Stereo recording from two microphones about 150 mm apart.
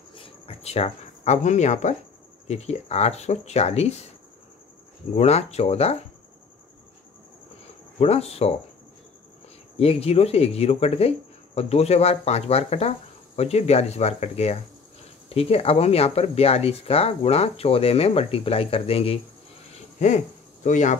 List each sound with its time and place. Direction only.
0.1 s cricket: 40° left (ahead or behind)
2.4 s speech: 45° left (ahead or behind)
5.1 s speech: 45° left (ahead or behind)
8.0 s speech: 45° left (ahead or behind)
9.8 s speech: 40° left (ahead or behind)
20.0 s speech: 50° left (ahead or behind)